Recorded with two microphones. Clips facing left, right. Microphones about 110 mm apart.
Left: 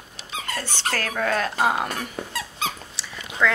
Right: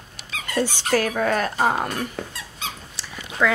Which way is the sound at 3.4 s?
10° right (ahead or behind).